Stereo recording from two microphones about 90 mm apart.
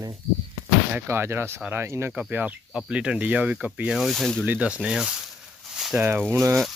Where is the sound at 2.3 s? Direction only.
15° right (ahead or behind).